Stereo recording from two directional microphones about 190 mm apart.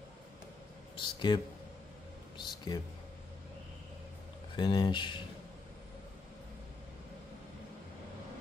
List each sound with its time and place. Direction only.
1.0 s a man's voice: 25° left (ahead or behind)
2.3 s a sound: 20° left (ahead or behind)
4.6 s speech: 20° left (ahead or behind)